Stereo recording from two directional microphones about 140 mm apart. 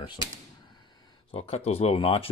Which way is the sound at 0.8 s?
35° left (ahead or behind).